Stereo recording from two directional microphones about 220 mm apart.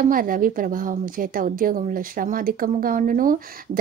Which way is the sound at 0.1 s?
40° right (ahead or behind).